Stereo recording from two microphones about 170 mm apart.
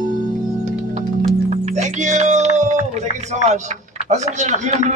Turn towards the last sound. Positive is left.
turn(degrees=-45)  # may be behind; listen again after turning